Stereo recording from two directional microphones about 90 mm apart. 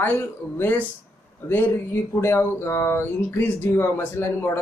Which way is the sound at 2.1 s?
30° left (ahead or behind).